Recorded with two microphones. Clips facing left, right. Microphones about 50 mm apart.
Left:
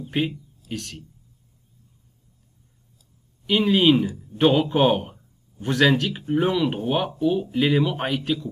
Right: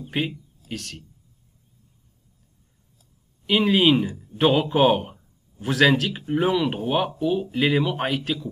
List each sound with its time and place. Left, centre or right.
0.2 s a man's voice: centre
3.4 s a man's voice: centre